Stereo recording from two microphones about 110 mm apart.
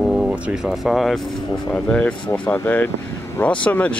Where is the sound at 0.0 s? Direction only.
5° right (ahead or behind).